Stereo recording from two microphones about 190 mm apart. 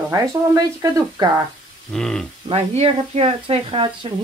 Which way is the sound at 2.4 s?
35° right (ahead or behind).